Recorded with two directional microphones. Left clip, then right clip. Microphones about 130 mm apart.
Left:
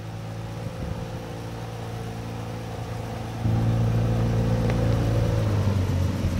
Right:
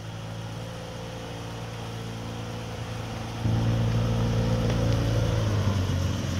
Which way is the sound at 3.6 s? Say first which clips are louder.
Left 2 dB; 20° left (ahead or behind).